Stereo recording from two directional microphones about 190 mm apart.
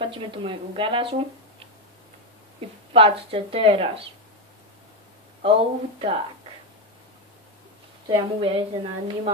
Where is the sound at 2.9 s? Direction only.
30° right (ahead or behind).